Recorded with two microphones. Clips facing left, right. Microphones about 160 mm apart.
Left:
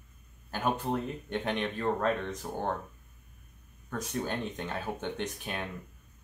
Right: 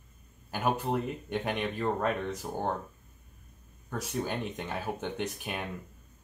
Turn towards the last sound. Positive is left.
turn(degrees=-10)  # may be behind; listen again after turning